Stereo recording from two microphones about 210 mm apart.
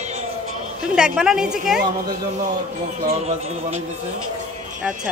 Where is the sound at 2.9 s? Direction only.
30° right (ahead or behind).